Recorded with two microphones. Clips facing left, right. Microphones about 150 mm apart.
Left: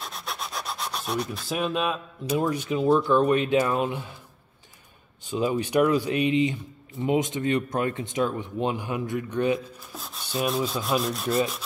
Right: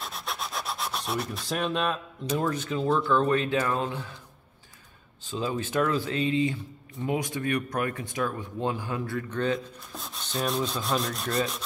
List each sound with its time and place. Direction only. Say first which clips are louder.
0.0 s rub: even; centre (ahead or behind); by 4.1 s 15° left (ahead or behind)
5.2 s speech: left 5 dB; 15° left (ahead or behind)
9.9 s rub: left 3 dB; centre (ahead or behind)